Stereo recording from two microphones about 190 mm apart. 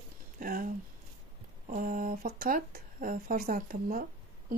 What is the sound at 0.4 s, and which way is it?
Speech, 45° right (ahead or behind).